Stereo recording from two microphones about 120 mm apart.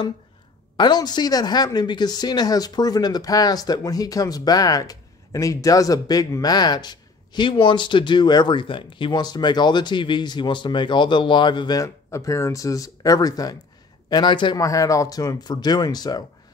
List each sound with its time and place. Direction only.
0.7 s speech: 35° left (ahead or behind)
14.6 s speech: 25° left (ahead or behind)